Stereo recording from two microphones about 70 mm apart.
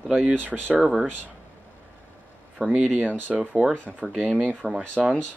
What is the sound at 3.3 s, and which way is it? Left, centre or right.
Speech, right.